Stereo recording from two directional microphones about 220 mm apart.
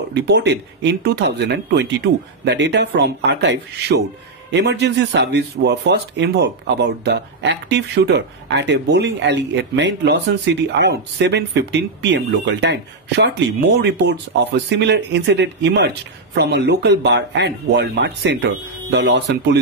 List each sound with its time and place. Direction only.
0.1 s speech: 50° right (ahead or behind)